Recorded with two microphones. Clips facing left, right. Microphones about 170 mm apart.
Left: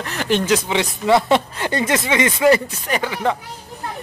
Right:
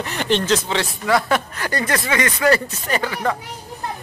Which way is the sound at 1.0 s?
25° left (ahead or behind).